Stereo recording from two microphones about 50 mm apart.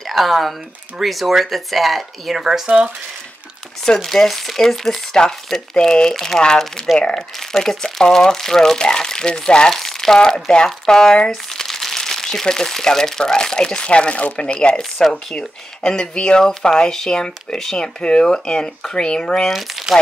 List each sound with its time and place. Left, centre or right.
0.1 s speech: centre
2.6 s speech: centre
3.8 s speech: centre
7.0 s speech: left
7.5 s speech: centre
14.8 s speech: centre
19.4 s speech: centre